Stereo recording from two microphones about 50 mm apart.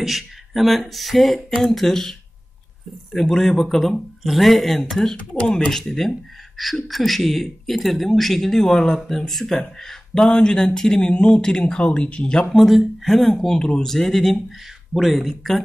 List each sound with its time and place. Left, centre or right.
0.0 s speech: centre
3.2 s speech: centre
12.5 s speech: centre